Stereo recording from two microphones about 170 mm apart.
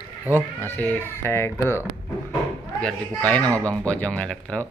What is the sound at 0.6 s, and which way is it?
Speech, 10° left (ahead or behind).